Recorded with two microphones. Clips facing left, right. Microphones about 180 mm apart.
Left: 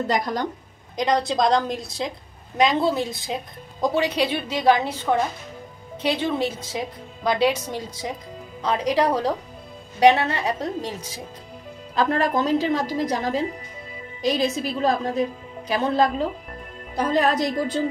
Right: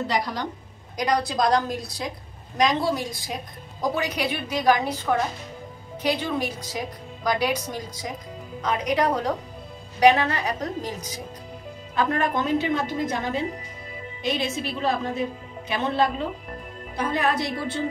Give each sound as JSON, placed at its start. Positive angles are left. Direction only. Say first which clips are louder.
{"t": 0.0, "sound": "speech", "louder": "left 3 dB", "side_deg": 45}
{"t": 0.9, "sound": "a woman's voice", "louder": "left 2 dB", "side_deg": 25}